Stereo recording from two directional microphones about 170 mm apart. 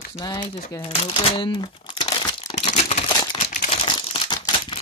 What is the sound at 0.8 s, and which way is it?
Crumpling, 35° left (ahead or behind).